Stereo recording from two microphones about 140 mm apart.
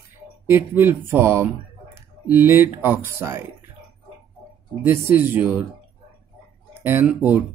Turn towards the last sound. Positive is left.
turn(degrees=-10)  # may be behind; listen again after turning